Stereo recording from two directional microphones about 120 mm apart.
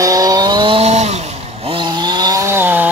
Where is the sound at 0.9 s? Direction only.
65° right (ahead or behind).